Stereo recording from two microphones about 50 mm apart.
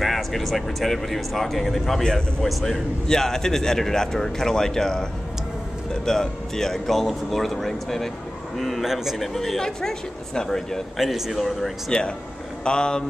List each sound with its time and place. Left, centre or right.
0.0 s a man's voice: centre
6.0 s a man's voice: centre
11.0 s speech: centre
11.9 s a man's voice: centre